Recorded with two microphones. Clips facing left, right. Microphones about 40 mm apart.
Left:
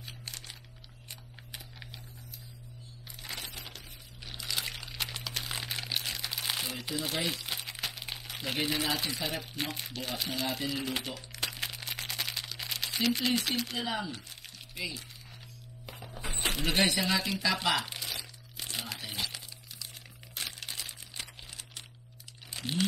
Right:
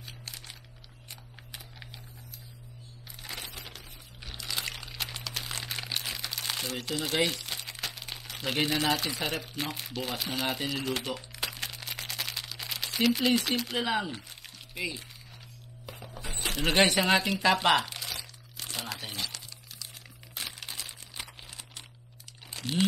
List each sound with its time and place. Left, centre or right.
0.0 s a sound: centre
3.2 s a sound: centre
6.3 s crumpling: centre
8.6 s speech: centre
10.4 s speech: right
10.7 s crumpling: centre
13.8 s speech: right
14.8 s speech: right
15.9 s music: centre
16.3 s keys jangling: centre
16.7 s speech: right
17.8 s crumpling: centre
22.6 s crumpling: centre